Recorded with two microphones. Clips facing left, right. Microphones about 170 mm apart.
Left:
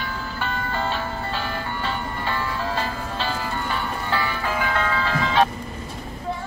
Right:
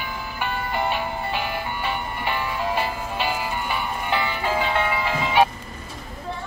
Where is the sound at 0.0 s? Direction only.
15° right (ahead or behind).